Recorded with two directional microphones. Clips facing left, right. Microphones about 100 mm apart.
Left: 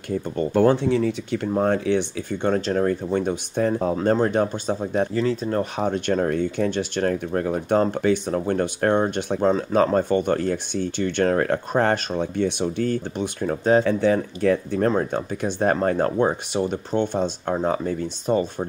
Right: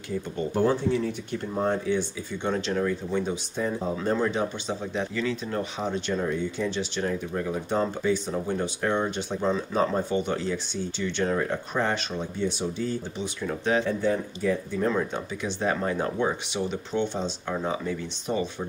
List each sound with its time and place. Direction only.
0.6 s speech: 90° left
2.3 s speech: 50° left (ahead or behind)
5.8 s speech: 55° left (ahead or behind)
11.7 s speech: 45° left (ahead or behind)
12.4 s speech: 65° left (ahead or behind); by 13.8 s 45° left (ahead or behind)
13.8 s speech: 85° left; by 14.9 s 65° left (ahead or behind)
14.9 s speech: 45° left (ahead or behind)